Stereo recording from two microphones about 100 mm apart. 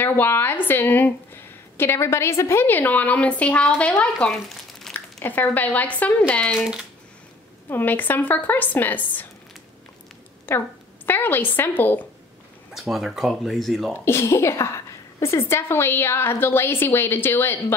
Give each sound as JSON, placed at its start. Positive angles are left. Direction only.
{"t": 0.0, "sound": "a woman's voice", "side_deg": 20}
{"t": 4.5, "sound": "crumpling", "side_deg": 5}
{"t": 5.2, "sound": "a woman's voice", "side_deg": 20}
{"t": 7.7, "sound": "a woman's voice", "side_deg": 20}
{"t": 10.5, "sound": "a woman's voice", "side_deg": 20}
{"t": 12.9, "sound": "speech", "side_deg": 0}
{"t": 14.0, "sound": "a woman's voice", "side_deg": 25}